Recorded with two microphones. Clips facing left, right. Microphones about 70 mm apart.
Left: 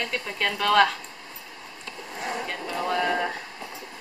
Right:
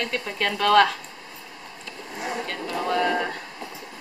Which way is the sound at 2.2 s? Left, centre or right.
Centre.